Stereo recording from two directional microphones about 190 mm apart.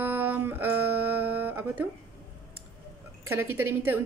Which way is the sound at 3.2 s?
10° right (ahead or behind).